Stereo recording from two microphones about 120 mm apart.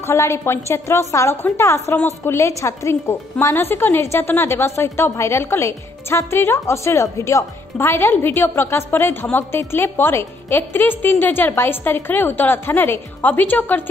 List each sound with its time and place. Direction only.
0.0 s a woman's voice: 25° left (ahead or behind)